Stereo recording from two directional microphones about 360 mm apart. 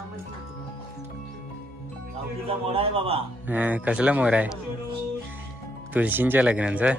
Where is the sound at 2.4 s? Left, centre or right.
Centre.